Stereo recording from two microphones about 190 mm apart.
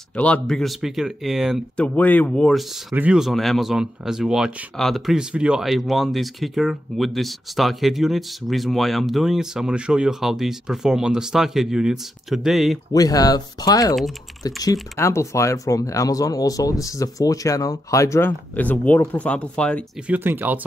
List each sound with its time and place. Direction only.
0.1 s speech: 5° left (ahead or behind)
2.9 s speech: 5° right (ahead or behind)
12.9 s speech: 20° left (ahead or behind)
20.1 s speech: 10° right (ahead or behind)